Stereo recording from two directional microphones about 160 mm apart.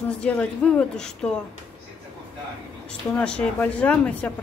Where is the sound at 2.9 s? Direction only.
5° left (ahead or behind).